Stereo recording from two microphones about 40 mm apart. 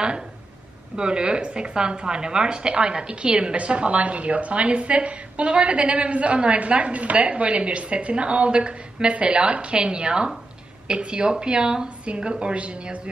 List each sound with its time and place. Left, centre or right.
0.9 s a woman's voice: right